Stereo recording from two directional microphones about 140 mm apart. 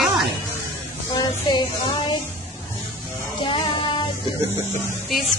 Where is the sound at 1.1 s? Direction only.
35° left (ahead or behind).